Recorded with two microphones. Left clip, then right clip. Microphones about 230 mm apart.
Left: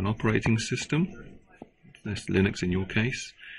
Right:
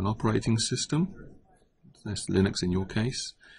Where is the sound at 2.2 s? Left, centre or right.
Centre.